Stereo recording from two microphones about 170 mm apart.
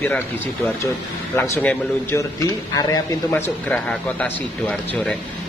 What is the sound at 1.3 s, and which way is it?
Speech, 15° left (ahead or behind).